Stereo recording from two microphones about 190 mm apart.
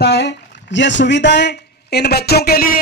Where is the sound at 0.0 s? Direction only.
60° left (ahead or behind).